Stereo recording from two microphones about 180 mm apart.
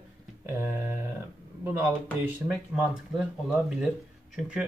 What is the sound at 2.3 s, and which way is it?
Speech, 10° right (ahead or behind).